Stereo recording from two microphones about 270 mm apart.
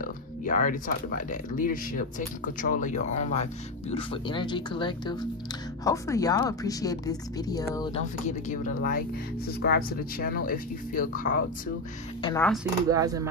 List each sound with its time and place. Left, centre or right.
0.0 s a woman's voice: left; by 8.0 s centre
8.3 s speech: left
12.2 s speech: centre
12.9 s speech: centre